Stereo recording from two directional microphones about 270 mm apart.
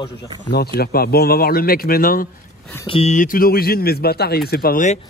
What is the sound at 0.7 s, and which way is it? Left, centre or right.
A man's voice, left.